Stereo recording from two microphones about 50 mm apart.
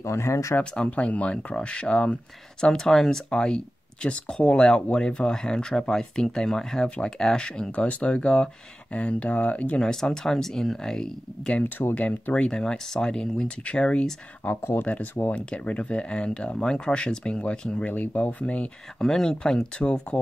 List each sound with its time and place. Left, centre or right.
0.0 s speech: left
0.7 s speech: left
2.6 s speech: centre; by 9.8 s left
9.8 s speech: centre
11.9 s speech: left
14.5 s speech: left
14.8 s speech: left
18.9 s speech: centre
19.8 s speech: left